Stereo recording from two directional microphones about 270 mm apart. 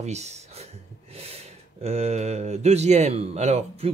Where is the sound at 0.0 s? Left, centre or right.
Right.